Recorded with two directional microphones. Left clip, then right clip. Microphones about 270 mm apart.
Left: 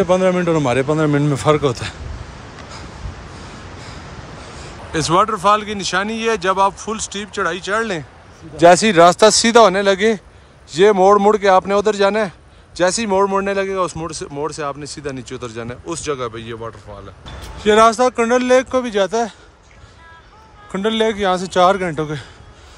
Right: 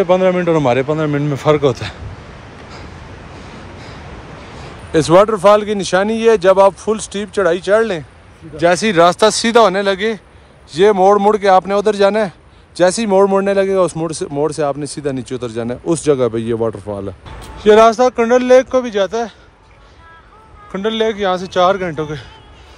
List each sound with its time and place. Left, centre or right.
0.0 s speech: centre
4.6 s speech: centre
8.5 s speech: centre
20.7 s speech: centre